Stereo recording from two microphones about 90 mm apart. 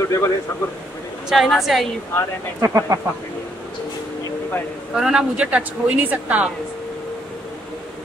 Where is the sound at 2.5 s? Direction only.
35° right (ahead or behind).